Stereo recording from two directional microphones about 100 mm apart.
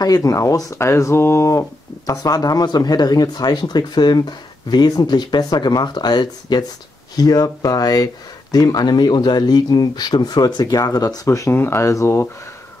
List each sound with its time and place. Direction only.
0.0 s speech: 35° left (ahead or behind)